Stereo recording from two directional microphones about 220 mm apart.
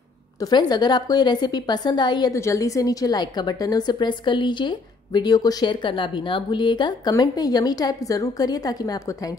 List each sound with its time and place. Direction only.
0.4 s a woman's voice: 20° left (ahead or behind)